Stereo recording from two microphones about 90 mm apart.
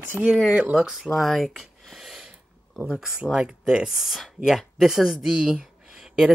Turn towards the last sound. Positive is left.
turn(degrees=-5)  # may be behind; listen again after turning